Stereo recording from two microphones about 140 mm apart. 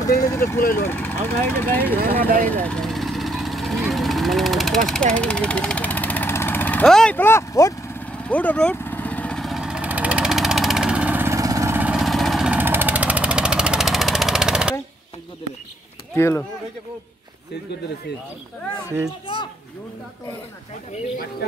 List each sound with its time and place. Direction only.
0.3 s speech: 15° left (ahead or behind)
2.0 s speech: 90° right
2.5 s vehicle: 5° left (ahead or behind)
7.2 s speech: 15° left (ahead or behind)
8.0 s vehicle: 10° left (ahead or behind); by 11.8 s 25° right (ahead or behind)
11.8 s vehicle: 5° right (ahead or behind)
12.5 s vehicle: 15° right (ahead or behind)
16.2 s speech: 15° left (ahead or behind)